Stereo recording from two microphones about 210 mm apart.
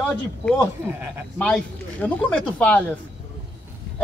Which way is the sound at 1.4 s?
5° left (ahead or behind).